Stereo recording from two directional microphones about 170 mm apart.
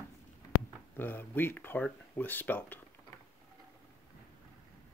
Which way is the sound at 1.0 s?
10° left (ahead or behind).